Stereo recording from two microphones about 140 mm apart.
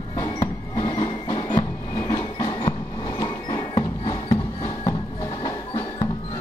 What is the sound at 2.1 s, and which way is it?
Train, 30° left (ahead or behind).